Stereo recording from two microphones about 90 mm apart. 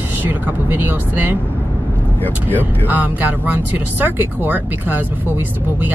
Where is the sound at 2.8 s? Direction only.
20° right (ahead or behind).